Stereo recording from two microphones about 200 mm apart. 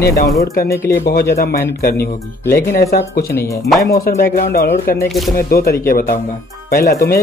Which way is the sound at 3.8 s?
50° left (ahead or behind).